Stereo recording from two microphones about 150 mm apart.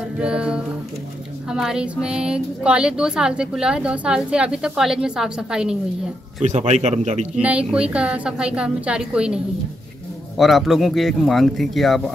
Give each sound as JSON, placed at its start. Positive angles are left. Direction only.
{"t": 0.2, "sound": "a woman's voice", "side_deg": -5}
{"t": 6.4, "sound": "speech", "side_deg": -50}
{"t": 7.3, "sound": "a woman's voice", "side_deg": -10}